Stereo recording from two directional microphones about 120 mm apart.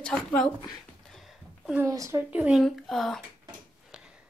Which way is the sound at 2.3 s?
10° right (ahead or behind).